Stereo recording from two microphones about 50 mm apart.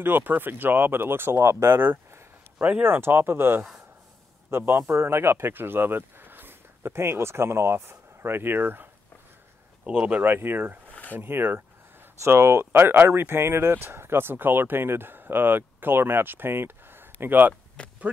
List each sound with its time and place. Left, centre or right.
0.0 s speech: right
1.8 s a sound: right
2.8 s a man's voice: right
9.8 s speech: right
10.2 s speech: right
10.9 s a sound: left
11.1 s a sound: right
12.2 s speech: right
17.8 s speech: left